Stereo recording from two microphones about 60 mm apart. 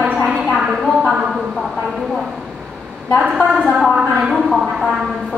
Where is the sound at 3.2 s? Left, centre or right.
Centre.